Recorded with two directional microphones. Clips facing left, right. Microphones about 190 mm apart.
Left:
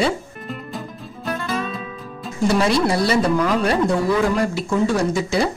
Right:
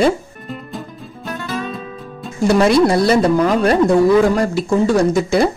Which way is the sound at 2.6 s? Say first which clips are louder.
Right 8 dB; 50° right (ahead or behind).